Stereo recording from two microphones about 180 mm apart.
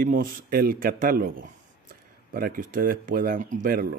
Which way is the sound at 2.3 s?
50° right (ahead or behind).